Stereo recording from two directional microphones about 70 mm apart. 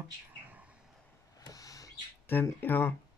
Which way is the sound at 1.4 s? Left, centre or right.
Left.